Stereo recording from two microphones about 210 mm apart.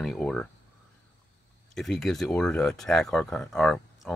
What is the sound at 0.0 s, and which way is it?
Speech, 5° left (ahead or behind).